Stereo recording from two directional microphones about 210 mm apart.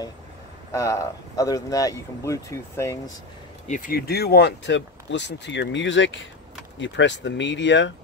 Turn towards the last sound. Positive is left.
turn(degrees=60)  # may be behind; listen again after turning